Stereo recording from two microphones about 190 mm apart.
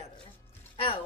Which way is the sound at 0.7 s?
30° left (ahead or behind).